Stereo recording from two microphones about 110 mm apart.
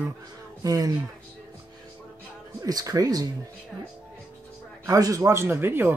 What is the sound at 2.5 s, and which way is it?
Speech, 35° right (ahead or behind).